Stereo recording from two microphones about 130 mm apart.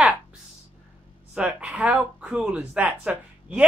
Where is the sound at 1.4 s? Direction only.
10° right (ahead or behind).